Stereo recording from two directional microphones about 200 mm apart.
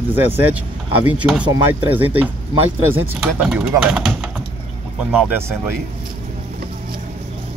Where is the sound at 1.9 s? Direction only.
10° right (ahead or behind).